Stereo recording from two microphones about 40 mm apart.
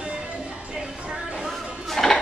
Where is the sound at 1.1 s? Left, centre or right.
Right.